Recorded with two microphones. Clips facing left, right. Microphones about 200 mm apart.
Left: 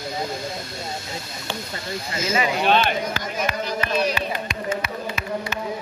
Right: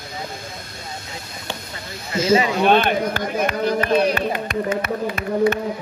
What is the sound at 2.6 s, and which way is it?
Speech, 55° right (ahead or behind).